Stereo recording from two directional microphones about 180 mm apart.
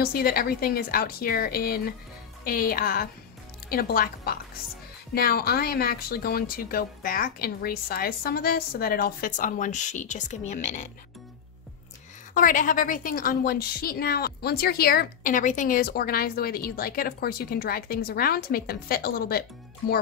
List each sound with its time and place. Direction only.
0.0 s a woman's voice: 55° left (ahead or behind)
12.4 s a woman's voice: 50° left (ahead or behind)